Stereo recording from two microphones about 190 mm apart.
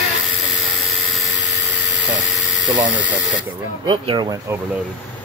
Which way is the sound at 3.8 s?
25° right (ahead or behind).